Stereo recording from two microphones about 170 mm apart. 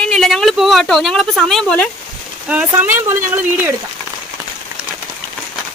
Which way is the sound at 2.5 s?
10° right (ahead or behind).